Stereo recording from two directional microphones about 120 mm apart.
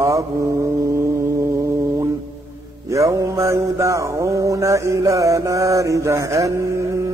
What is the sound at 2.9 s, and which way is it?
Mantra, 25° right (ahead or behind).